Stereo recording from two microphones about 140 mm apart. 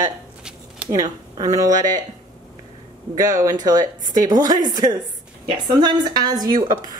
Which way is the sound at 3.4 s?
25° right (ahead or behind).